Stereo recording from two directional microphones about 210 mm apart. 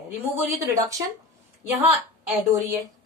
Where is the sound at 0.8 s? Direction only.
15° right (ahead or behind).